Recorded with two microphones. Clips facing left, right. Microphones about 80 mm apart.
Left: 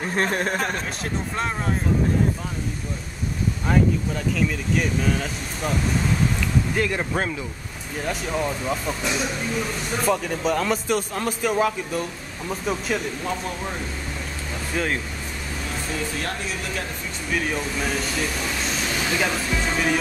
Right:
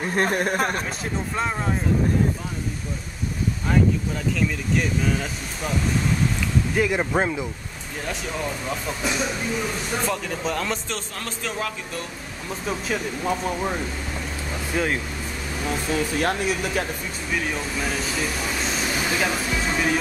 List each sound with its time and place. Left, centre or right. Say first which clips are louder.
0.2 s speech: right 2 dB; centre
4.4 s speech: even; centre
8.0 s speech: left 3 dB; centre
17.3 s speech: left 2 dB; centre